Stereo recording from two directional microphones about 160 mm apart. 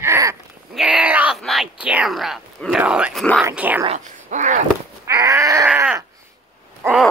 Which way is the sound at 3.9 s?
50° right (ahead or behind).